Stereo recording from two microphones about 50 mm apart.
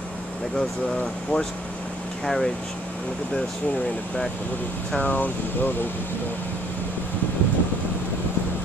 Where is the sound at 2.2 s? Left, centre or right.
Centre.